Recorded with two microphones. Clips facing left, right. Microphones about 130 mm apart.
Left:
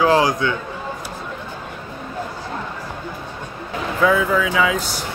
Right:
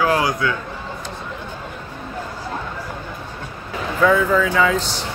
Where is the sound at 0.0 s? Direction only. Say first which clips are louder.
Left 3 dB; 25° left (ahead or behind).